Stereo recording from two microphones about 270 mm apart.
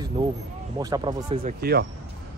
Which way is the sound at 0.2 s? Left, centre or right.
Centre.